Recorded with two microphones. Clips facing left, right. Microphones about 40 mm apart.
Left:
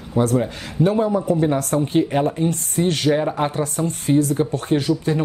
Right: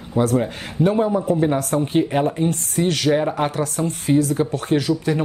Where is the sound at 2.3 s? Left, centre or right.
Right.